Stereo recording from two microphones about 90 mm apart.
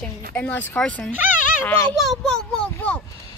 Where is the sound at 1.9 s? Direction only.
5° left (ahead or behind).